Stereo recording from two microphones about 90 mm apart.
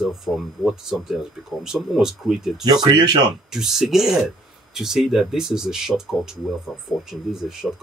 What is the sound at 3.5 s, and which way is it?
Speech, 5° right (ahead or behind).